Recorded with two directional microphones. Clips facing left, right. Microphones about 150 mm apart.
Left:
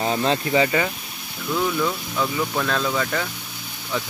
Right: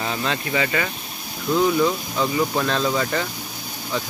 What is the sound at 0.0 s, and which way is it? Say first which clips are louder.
Speech: left 4 dB; 35° left (ahead or behind).